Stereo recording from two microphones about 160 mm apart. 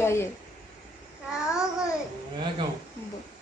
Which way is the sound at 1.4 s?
5° right (ahead or behind).